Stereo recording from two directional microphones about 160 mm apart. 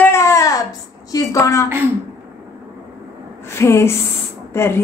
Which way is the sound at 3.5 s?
15° left (ahead or behind).